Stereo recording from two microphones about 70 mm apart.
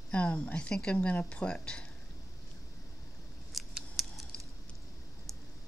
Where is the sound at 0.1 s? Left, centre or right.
Centre.